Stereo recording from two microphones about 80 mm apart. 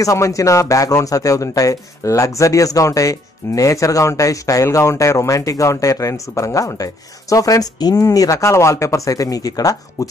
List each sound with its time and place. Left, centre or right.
0.0 s speech: left